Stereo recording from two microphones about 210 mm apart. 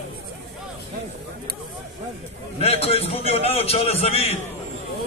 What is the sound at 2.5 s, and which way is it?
A man's voice, 30° left (ahead or behind).